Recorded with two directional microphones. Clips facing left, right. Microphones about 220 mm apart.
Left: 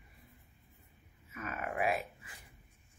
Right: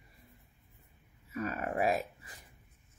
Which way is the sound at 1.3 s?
35° right (ahead or behind).